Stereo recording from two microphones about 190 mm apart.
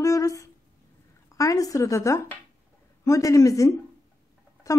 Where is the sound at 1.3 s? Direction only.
15° left (ahead or behind).